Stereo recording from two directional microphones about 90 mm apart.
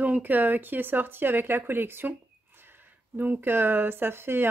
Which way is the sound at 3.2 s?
25° right (ahead or behind).